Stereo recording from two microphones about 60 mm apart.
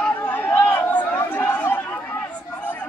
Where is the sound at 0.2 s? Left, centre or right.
Left.